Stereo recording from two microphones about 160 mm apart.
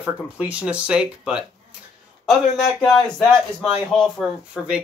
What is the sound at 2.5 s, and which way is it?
Speech, centre (ahead or behind).